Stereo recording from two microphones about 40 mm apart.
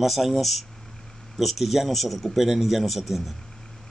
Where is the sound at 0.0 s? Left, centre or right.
Centre.